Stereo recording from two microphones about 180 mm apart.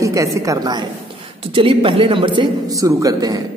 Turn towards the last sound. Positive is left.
turn(degrees=-25)  # may be behind; listen again after turning